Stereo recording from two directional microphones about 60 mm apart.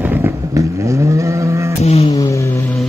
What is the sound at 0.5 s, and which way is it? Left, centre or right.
Vehicle, right.